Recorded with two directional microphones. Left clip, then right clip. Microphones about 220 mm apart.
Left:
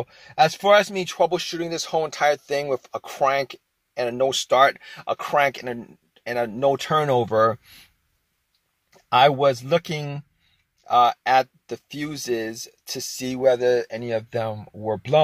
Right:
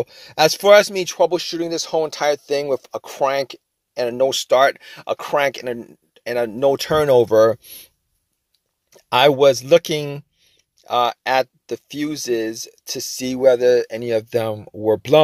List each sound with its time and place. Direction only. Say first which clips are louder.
0.0 s speech: right 3 dB; 50° right (ahead or behind)
8.9 s speech: right 2 dB; 45° right (ahead or behind)